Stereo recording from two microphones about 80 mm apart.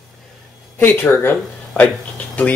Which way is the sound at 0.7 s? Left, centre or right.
Left.